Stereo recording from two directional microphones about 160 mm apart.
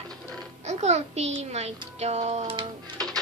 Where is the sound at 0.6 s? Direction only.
45° right (ahead or behind).